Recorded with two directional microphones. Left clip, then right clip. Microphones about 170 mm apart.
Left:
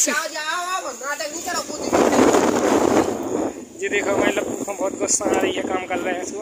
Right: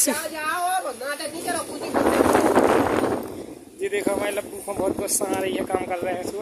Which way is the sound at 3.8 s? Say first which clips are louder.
Left 4 dB; 20° right (ahead or behind).